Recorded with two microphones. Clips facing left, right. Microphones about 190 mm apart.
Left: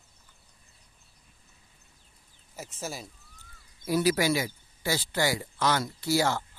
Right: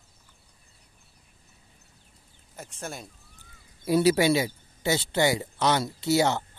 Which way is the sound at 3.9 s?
25° right (ahead or behind).